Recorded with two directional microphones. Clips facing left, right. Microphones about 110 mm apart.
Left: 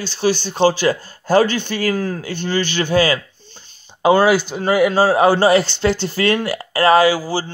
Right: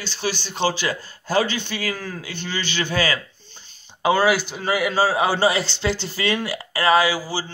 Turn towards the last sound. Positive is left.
turn(degrees=45)  # may be behind; listen again after turning